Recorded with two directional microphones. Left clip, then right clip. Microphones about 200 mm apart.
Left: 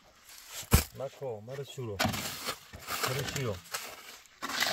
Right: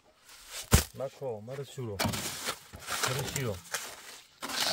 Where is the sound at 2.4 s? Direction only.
15° right (ahead or behind).